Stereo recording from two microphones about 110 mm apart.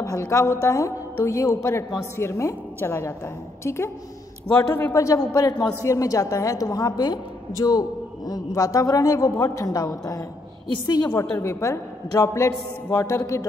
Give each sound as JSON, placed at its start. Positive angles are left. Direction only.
{"t": 0.0, "sound": "a woman's voice", "side_deg": 30}
{"t": 4.5, "sound": "a man's voice", "side_deg": 15}
{"t": 4.9, "sound": "a woman's voice", "side_deg": 30}
{"t": 11.1, "sound": "a woman's voice", "side_deg": 25}